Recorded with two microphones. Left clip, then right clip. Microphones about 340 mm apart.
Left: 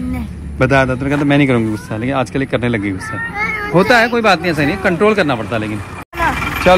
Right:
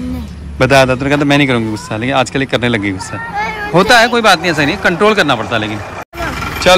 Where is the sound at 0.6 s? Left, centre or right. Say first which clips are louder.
Right 4 dB; centre.